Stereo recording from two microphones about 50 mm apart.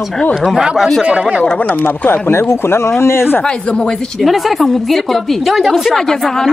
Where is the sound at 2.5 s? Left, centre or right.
Left.